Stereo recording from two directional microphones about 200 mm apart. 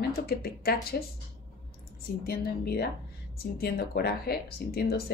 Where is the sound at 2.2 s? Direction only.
50° left (ahead or behind).